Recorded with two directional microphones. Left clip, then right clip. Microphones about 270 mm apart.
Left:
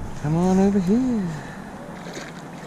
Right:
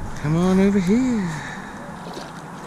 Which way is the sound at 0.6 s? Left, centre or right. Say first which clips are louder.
Right 2 dB; right.